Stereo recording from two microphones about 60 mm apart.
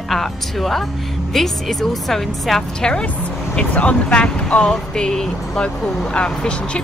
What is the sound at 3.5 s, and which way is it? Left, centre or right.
Speech, left.